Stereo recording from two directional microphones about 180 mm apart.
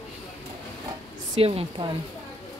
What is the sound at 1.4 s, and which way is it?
Speech, 30° right (ahead or behind).